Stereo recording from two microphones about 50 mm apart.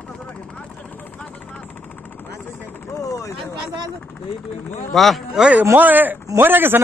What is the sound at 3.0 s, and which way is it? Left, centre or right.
Speech, left.